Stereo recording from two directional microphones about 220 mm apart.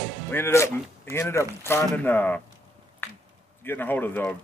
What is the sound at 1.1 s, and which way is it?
Speech, 10° left (ahead or behind).